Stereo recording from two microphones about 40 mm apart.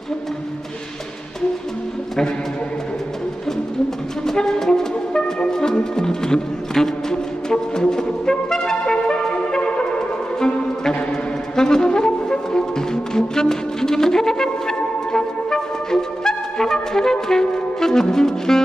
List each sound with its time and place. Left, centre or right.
4.3 s music: centre